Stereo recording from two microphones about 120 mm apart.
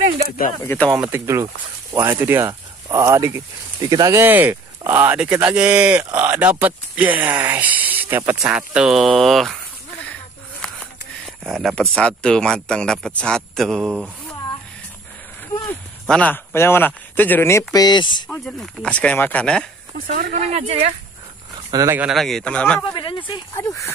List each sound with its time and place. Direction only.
0.7 s speech: 10° left (ahead or behind)
0.9 s speech: 10° right (ahead or behind)
1.2 s speech: 25° right (ahead or behind)
4.2 s speech: 15° right (ahead or behind); by 9.6 s centre (ahead or behind)
10.6 s speech: centre (ahead or behind)
16.1 s speech: 10° left (ahead or behind)
17.7 s speech: 35° left (ahead or behind)
18.4 s speech: 5° left (ahead or behind)
20.1 s speech: 60° right (ahead or behind)
22.1 s speech: 5° left (ahead or behind)
22.9 s speech: 45° left (ahead or behind)
23.5 s speech: 20° left (ahead or behind)